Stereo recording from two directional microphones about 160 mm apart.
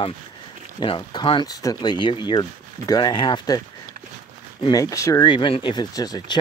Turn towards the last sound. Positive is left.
turn(degrees=25)  # may be behind; listen again after turning